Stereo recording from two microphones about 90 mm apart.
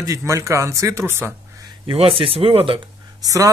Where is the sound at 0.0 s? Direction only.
35° right (ahead or behind).